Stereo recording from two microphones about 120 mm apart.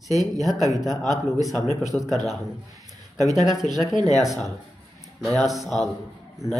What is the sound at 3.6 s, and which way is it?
Speech, 90° left.